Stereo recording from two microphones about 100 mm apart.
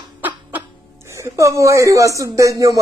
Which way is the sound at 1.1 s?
30° right (ahead or behind).